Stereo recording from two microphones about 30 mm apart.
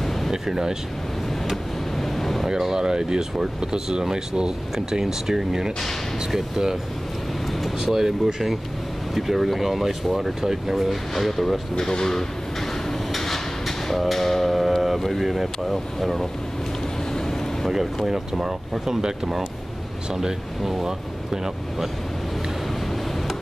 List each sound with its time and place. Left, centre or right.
0.3 s speech: centre
2.0 s a sound: centre
2.4 s speech: centre
7.8 s speech: centre
11.1 s speech: centre
11.9 s a sound: centre
15.2 s speech: centre
17.1 s vehicle: centre
18.0 s speech: centre